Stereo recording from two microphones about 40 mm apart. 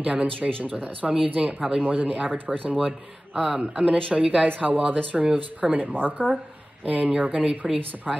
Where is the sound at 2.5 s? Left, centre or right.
Centre; by 4.4 s right.